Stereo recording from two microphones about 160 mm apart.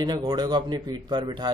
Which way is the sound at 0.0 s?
25° right (ahead or behind).